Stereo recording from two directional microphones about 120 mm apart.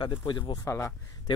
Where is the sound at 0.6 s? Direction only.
20° left (ahead or behind).